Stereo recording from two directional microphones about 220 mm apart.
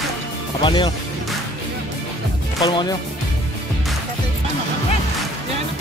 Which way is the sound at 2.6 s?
15° left (ahead or behind).